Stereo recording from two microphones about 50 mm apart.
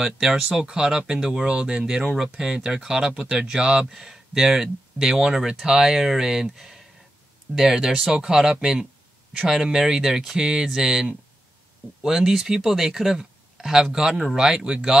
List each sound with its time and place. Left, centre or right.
0.0 s speech: centre